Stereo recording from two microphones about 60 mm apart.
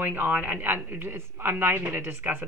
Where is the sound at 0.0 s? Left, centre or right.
Right.